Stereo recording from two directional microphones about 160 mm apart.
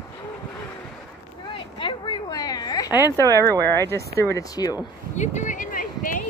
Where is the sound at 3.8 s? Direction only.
15° left (ahead or behind).